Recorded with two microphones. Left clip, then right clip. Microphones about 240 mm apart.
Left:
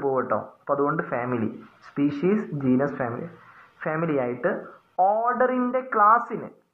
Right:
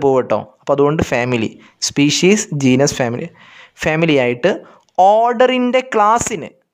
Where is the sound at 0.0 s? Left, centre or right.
Right.